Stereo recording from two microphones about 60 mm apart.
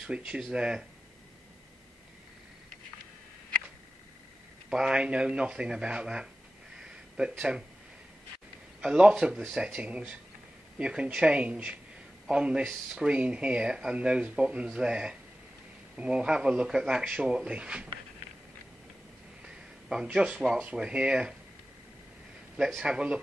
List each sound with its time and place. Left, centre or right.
0.0 s speech: centre
4.6 s speech: centre
6.7 s a sound: centre
8.8 s speech: centre
19.4 s a sound: centre
20.7 s speech: centre
22.8 s speech: centre